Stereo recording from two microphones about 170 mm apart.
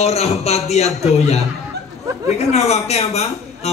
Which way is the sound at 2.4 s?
40° left (ahead or behind).